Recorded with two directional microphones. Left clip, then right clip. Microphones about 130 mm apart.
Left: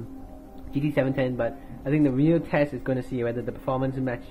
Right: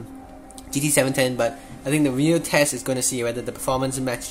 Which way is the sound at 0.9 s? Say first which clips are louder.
Right 5 dB; 40° right (ahead or behind).